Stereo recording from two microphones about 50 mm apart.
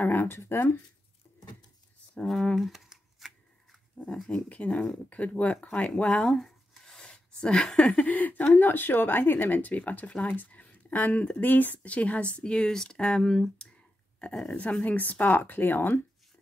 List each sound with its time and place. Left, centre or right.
0.0 s a sound: left
0.5 s speech: left
2.5 s camera: centre
4.0 s speech: left
6.8 s a sound: centre
7.6 s speech: centre
8.0 s speech: left
13.2 s speech: centre
14.6 s speech: left